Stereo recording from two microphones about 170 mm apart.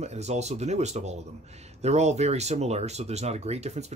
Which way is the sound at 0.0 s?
40° right (ahead or behind).